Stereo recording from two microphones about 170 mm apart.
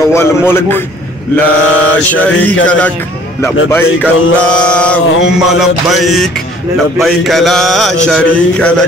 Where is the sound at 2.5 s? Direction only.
10° left (ahead or behind).